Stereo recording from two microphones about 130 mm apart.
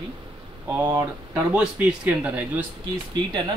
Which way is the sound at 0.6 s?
15° right (ahead or behind).